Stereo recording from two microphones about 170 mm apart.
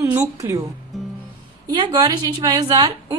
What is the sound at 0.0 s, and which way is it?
Speech, 20° right (ahead or behind).